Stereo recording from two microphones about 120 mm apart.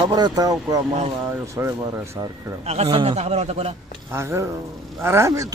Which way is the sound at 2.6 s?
60° right (ahead or behind).